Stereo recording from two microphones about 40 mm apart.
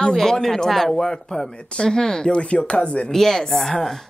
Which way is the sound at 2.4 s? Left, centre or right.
Left.